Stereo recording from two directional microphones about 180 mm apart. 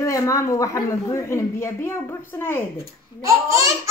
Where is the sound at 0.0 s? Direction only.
15° left (ahead or behind).